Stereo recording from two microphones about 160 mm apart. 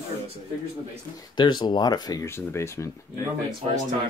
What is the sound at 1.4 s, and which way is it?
Speech, 30° left (ahead or behind).